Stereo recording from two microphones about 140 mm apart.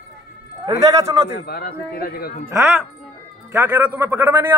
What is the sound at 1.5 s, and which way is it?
A man's voice, 90° left.